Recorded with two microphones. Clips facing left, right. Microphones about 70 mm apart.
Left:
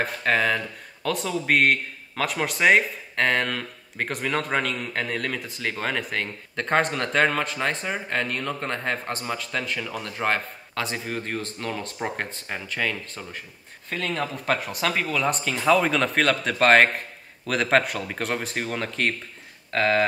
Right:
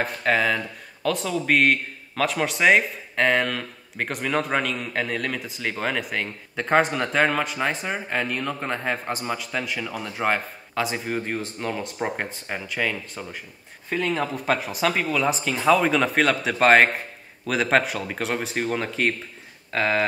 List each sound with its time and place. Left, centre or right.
0.0 s speech: centre